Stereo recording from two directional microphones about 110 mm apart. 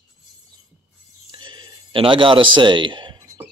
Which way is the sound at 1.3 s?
45° right (ahead or behind).